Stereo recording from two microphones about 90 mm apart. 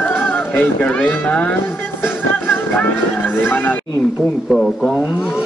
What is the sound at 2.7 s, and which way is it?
Music, 20° left (ahead or behind).